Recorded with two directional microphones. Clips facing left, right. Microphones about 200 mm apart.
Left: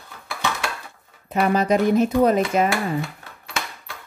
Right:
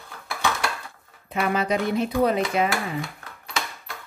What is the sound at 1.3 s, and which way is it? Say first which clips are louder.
Speech: left 5 dB; 40° left (ahead or behind).